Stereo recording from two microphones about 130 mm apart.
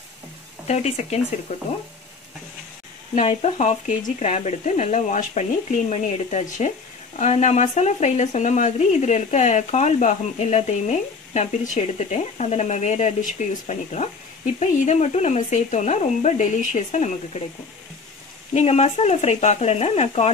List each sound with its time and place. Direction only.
0.7 s speech: 55° left (ahead or behind)
3.2 s speech: 55° left (ahead or behind)
18.5 s speech: 55° left (ahead or behind)